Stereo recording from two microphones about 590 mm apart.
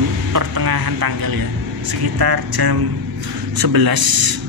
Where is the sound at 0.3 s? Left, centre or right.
Right.